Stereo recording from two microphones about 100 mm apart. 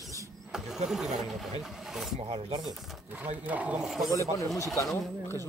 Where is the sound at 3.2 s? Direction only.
15° right (ahead or behind).